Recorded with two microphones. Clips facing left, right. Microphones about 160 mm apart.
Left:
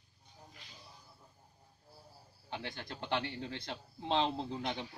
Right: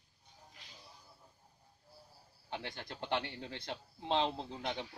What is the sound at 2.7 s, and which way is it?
Speech, 15° right (ahead or behind).